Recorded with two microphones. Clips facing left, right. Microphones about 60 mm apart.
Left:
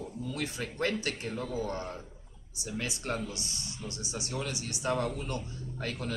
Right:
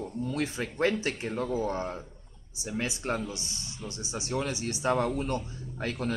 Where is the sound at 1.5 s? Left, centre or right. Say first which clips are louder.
Right 4 dB; right.